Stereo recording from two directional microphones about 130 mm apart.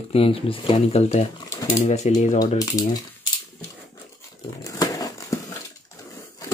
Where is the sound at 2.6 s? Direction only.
25° left (ahead or behind).